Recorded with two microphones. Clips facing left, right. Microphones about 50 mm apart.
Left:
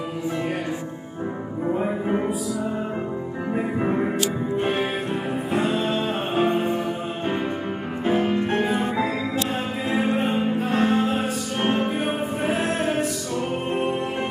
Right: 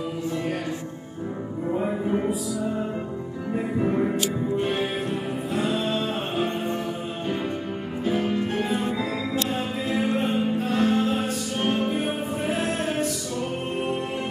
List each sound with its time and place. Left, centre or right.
1.7 s music: centre
3.5 s music: left
8.2 s music: left